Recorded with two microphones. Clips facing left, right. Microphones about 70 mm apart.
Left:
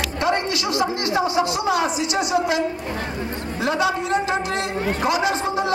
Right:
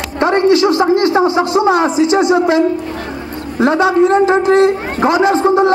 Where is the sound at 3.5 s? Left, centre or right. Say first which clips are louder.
Right 11 dB; right.